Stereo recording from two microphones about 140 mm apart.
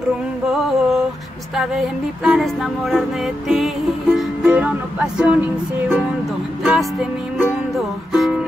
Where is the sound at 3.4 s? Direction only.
Centre (ahead or behind).